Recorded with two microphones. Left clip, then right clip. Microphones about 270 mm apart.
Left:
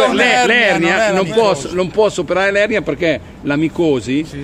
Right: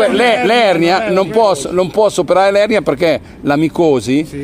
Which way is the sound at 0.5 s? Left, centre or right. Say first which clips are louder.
Right 2 dB; centre.